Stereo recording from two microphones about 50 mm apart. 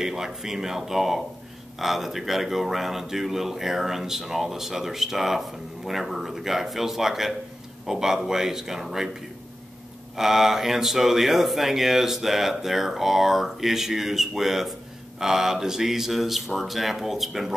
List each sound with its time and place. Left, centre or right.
0.0 s speech: centre
10.1 s speech: centre